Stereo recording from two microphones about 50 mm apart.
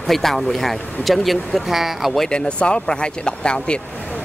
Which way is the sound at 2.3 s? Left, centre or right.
Centre.